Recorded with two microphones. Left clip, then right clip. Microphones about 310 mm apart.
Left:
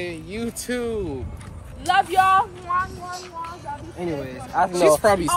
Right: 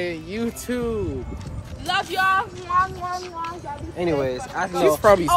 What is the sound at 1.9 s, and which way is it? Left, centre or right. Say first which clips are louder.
Speech: left 4 dB; centre.